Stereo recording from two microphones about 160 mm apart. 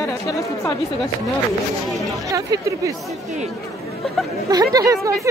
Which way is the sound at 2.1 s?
20° right (ahead or behind).